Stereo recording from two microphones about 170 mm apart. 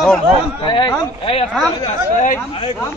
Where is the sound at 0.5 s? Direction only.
25° left (ahead or behind).